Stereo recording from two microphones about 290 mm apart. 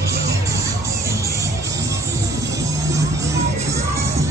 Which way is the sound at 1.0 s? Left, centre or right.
Centre.